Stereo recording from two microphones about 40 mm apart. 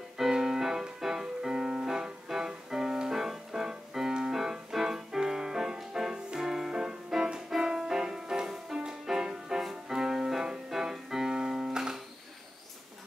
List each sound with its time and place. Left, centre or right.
0.2 s music: centre